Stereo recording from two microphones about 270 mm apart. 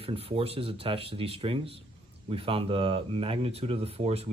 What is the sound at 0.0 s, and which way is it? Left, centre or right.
Speech, right.